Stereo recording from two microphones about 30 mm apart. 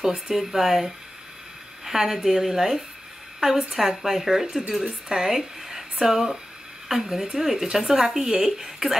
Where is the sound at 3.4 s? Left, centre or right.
Right.